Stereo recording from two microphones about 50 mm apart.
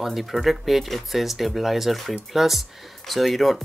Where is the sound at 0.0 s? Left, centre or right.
Centre.